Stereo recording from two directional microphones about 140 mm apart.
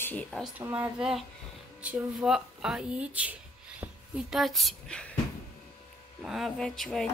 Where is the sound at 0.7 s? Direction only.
5° right (ahead or behind).